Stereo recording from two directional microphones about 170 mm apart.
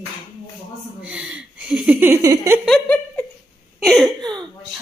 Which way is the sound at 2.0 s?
15° right (ahead or behind).